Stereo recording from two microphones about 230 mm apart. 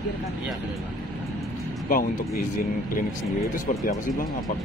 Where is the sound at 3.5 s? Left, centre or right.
Left.